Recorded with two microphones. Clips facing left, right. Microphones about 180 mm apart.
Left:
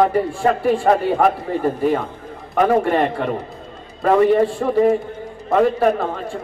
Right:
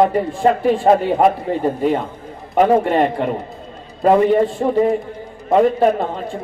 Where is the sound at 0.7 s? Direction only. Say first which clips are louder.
Right 2 dB; 20° right (ahead or behind).